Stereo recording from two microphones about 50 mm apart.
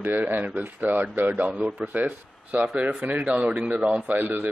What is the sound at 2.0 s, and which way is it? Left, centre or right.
Speech, right.